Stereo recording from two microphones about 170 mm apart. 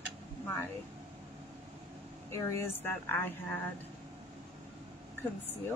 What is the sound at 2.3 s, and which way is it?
A woman's voice, 15° left (ahead or behind).